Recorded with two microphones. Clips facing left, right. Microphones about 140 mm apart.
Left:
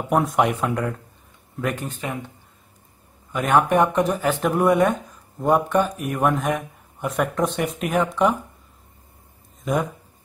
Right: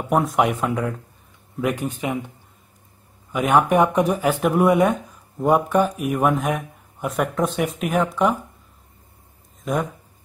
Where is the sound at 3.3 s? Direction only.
10° right (ahead or behind).